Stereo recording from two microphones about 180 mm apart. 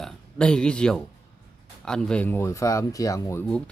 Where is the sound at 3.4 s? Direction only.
5° left (ahead or behind).